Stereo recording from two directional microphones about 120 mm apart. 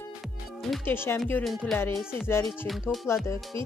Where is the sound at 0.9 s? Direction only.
20° left (ahead or behind).